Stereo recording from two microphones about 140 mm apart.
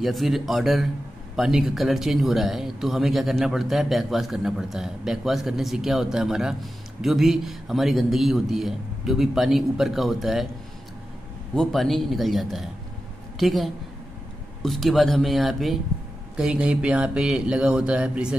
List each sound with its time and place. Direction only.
0.0 s speech: centre (ahead or behind)
11.5 s speech: 5° left (ahead or behind)